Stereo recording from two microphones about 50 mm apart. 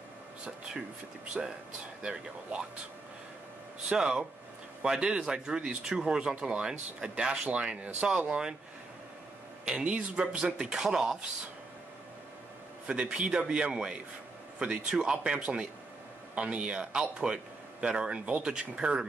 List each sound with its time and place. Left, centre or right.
1.4 s speech: centre
3.9 s speech: centre
10.1 s speech: centre
12.8 s speech: right